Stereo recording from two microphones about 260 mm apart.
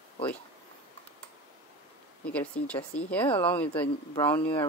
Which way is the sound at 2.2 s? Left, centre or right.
Centre.